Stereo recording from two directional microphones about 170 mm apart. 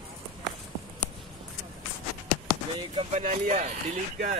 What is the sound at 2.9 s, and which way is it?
Speech, 40° right (ahead or behind).